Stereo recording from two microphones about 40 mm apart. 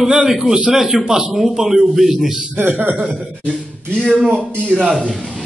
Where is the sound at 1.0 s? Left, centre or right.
Right.